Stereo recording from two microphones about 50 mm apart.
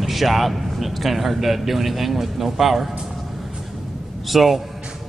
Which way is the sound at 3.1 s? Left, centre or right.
Centre.